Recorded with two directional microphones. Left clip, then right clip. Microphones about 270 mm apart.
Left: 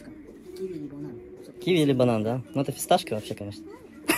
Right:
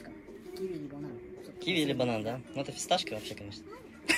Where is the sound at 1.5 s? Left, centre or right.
Centre.